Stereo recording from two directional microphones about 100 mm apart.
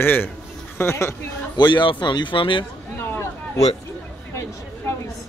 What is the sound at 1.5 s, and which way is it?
A man's voice, 50° left (ahead or behind).